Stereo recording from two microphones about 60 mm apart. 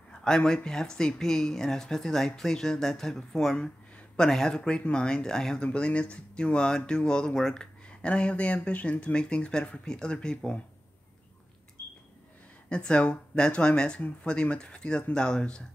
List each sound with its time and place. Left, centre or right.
0.1 s speech: centre
12.6 s speech: centre